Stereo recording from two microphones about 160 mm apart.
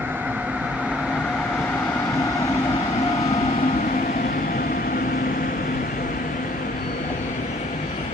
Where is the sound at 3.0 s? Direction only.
40° left (ahead or behind); by 6.0 s 60° left (ahead or behind).